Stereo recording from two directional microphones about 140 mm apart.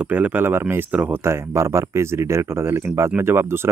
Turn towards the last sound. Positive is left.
turn(degrees=-15)  # may be behind; listen again after turning